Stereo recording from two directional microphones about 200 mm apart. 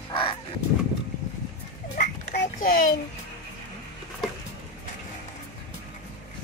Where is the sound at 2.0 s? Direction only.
45° left (ahead or behind).